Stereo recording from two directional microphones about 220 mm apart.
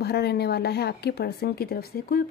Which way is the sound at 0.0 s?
45° left (ahead or behind).